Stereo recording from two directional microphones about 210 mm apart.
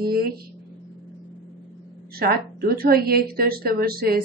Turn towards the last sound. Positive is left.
turn(degrees=-45)  # may be behind; listen again after turning